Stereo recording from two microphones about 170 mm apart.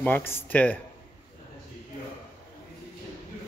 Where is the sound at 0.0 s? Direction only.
10° left (ahead or behind).